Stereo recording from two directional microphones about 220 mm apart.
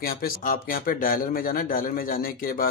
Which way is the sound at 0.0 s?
40° left (ahead or behind).